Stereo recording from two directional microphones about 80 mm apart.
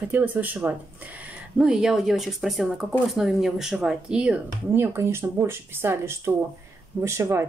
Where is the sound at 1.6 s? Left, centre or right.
Centre.